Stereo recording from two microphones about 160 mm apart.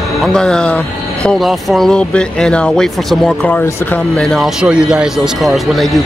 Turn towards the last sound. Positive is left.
turn(degrees=0)  # may be behind; listen again after turning